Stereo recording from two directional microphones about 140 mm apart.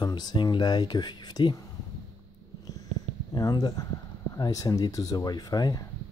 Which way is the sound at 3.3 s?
30° left (ahead or behind).